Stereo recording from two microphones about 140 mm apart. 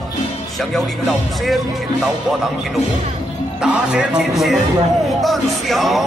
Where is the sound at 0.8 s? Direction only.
Centre (ahead or behind).